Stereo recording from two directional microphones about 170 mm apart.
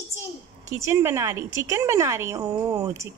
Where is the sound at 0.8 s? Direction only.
15° right (ahead or behind).